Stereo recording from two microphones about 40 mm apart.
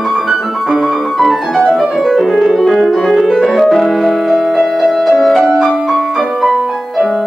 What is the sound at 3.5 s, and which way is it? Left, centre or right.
Music, centre.